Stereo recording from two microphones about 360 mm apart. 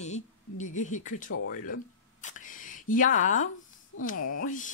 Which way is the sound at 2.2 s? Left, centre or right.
Left.